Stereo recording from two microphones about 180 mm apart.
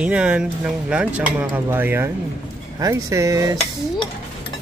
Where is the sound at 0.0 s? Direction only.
5° right (ahead or behind).